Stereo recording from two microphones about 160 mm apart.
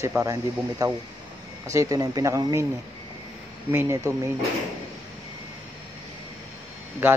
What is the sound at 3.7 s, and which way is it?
Speech, 15° right (ahead or behind).